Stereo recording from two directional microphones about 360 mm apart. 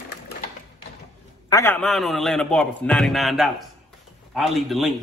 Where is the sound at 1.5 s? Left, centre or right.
Centre.